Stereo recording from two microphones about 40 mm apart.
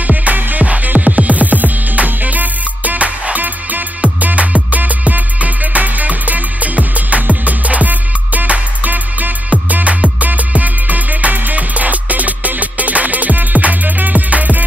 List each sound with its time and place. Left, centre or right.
0.0 s music: right